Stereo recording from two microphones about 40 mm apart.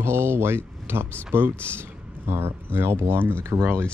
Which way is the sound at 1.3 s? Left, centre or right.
Right.